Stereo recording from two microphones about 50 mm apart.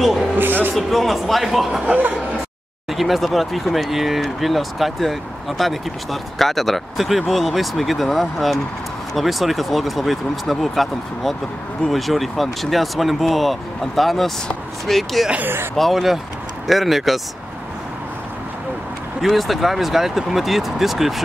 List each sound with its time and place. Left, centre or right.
0.4 s a sound: right
0.7 s speech: centre
2.9 s speech: centre
15.4 s speech: right
15.7 s speech: centre
19.2 s speech: centre